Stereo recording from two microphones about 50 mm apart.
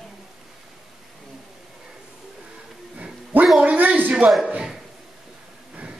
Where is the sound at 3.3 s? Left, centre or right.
Right.